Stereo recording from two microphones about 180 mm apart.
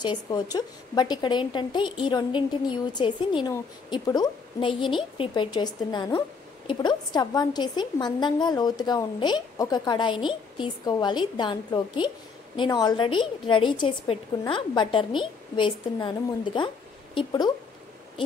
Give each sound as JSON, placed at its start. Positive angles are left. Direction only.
{"t": 0.0, "sound": "a woman's voice", "side_deg": 25}